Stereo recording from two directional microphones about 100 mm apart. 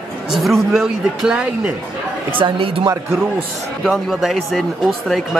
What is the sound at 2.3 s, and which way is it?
Speech, 60° right (ahead or behind).